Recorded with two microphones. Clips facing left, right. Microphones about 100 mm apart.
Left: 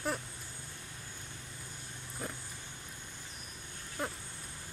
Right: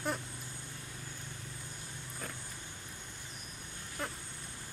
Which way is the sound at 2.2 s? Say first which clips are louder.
Left 3 dB; 20° left (ahead or behind).